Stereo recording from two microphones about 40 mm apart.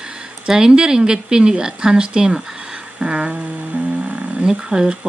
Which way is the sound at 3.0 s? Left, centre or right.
Right.